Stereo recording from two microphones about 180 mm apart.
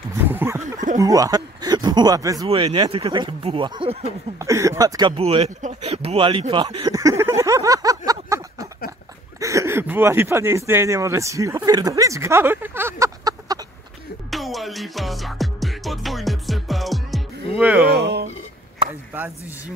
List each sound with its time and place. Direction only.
0.2 s a sound: 10° right (ahead or behind)
0.9 s speech: 20° right (ahead or behind)
2.4 s speech: 30° right (ahead or behind)
4.4 s speech: 15° right (ahead or behind)
14.3 s music: centre (ahead or behind)
17.6 s speech: 5° right (ahead or behind)
17.8 s speech: 65° right (ahead or behind)